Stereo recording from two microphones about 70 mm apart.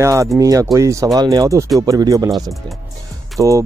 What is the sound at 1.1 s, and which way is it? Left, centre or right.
Speech, right.